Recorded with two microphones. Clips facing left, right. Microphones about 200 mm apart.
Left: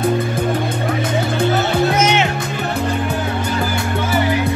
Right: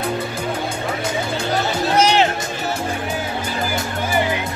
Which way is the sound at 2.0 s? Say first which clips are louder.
Even; 35° right (ahead or behind).